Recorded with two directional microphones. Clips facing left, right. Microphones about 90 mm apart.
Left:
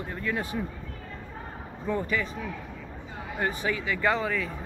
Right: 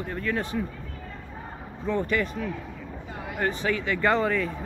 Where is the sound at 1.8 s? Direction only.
15° left (ahead or behind).